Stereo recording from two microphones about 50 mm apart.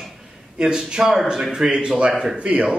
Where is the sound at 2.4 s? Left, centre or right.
Right.